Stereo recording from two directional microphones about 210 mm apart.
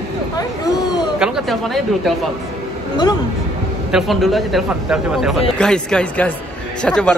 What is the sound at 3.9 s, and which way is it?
A man's voice, centre (ahead or behind).